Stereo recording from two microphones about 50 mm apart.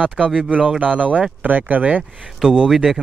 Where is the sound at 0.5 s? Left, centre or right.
Right.